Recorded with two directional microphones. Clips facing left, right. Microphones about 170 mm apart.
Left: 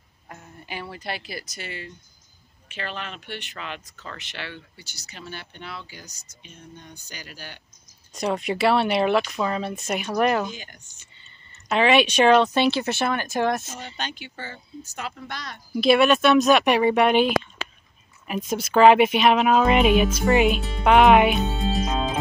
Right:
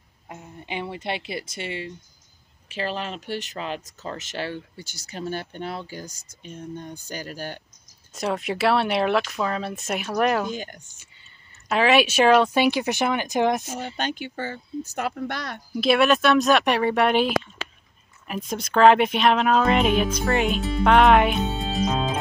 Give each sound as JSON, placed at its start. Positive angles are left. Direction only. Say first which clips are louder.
{"t": 0.3, "sound": "speech", "louder": "right 4 dB", "side_deg": -20}
{"t": 8.1, "sound": "speech", "louder": "left 1 dB", "side_deg": 0}
{"t": 10.5, "sound": "speech", "louder": "right 8 dB", "side_deg": -50}
{"t": 11.5, "sound": "speech", "louder": "even", "side_deg": -5}
{"t": 13.9, "sound": "speech", "louder": "right 5 dB", "side_deg": -50}
{"t": 15.7, "sound": "speech", "louder": "left 2 dB", "side_deg": 0}